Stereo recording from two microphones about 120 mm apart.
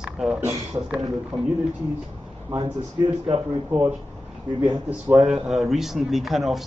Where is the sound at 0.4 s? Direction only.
20° right (ahead or behind).